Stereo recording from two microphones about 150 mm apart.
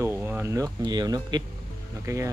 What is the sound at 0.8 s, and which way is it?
Speech, 30° right (ahead or behind).